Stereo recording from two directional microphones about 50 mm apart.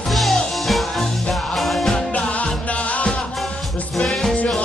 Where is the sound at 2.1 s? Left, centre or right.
Left.